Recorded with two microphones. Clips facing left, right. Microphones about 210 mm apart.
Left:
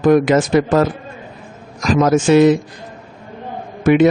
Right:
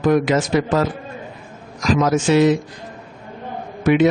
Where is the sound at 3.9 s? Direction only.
50° left (ahead or behind).